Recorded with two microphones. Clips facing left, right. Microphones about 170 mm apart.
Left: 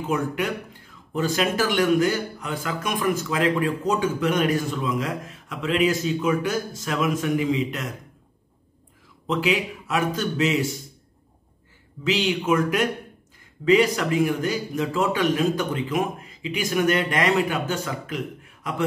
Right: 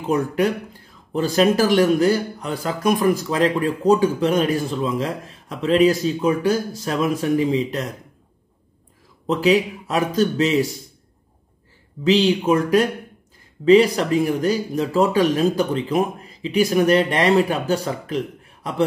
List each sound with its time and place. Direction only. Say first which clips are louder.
0.1 s speech: right 6 dB; 35° right (ahead or behind)
9.3 s speech: right 6 dB; 35° right (ahead or behind)
12.0 s speech: right 7 dB; 35° right (ahead or behind)